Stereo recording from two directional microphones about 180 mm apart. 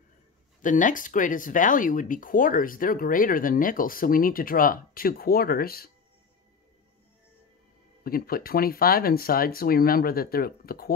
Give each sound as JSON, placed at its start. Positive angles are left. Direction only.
{"t": 0.6, "sound": "speech", "side_deg": 45}
{"t": 8.0, "sound": "speech", "side_deg": 55}